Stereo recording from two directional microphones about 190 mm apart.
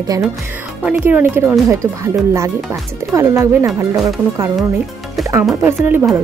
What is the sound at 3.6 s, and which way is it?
Speech, centre (ahead or behind).